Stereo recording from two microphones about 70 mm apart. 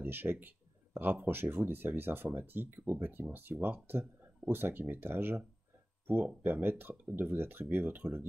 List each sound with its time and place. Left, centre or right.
0.0 s speech: right
6.4 s speech: right